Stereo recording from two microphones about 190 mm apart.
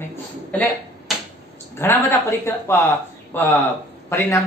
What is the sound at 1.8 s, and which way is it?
Speech, 15° left (ahead or behind).